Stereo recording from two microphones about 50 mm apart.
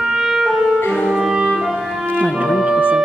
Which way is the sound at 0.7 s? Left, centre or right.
Left.